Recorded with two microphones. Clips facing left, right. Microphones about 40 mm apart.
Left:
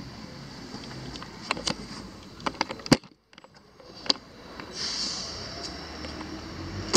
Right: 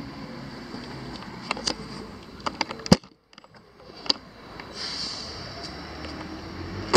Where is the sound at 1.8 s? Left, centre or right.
Centre.